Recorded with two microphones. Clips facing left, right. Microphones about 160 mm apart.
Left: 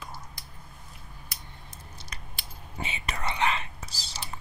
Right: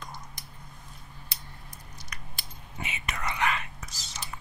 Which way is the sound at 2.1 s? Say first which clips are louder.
Right 1 dB; 30° left (ahead or behind).